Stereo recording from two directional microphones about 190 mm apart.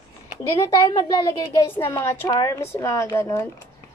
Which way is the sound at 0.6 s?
20° left (ahead or behind).